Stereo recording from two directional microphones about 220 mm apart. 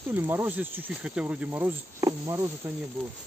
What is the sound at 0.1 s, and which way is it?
Speech, 10° right (ahead or behind).